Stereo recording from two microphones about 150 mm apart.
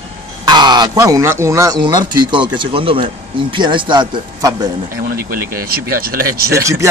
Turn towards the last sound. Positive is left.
turn(degrees=-20)  # may be behind; listen again after turning